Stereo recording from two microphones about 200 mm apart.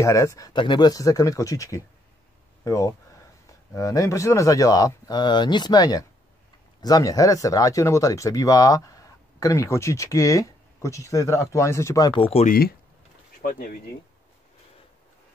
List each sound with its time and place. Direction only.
0.0 s speech: 15° left (ahead or behind)
12.4 s speech: 50° left (ahead or behind)